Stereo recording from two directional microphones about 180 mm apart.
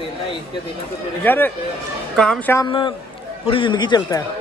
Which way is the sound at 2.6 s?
25° left (ahead or behind).